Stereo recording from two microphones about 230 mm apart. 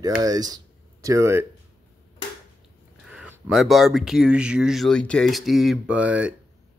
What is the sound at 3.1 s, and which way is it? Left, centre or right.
Speech, centre.